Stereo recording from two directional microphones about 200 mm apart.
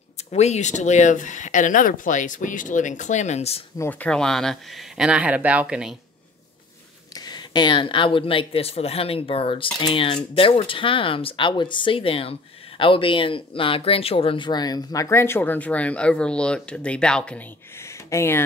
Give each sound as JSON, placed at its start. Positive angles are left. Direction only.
{"t": 0.3, "sound": "speech", "side_deg": 35}
{"t": 3.7, "sound": "speech", "side_deg": 10}
{"t": 7.2, "sound": "speech", "side_deg": 20}